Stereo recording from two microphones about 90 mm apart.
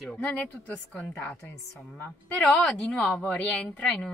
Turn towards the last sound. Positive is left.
turn(degrees=10)  # may be behind; listen again after turning